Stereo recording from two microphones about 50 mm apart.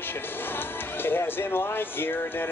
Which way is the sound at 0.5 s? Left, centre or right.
Left.